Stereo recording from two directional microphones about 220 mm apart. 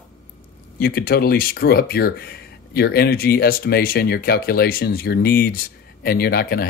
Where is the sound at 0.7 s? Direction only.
45° left (ahead or behind).